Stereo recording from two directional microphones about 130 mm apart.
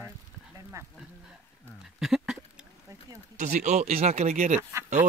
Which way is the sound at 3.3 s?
65° right (ahead or behind).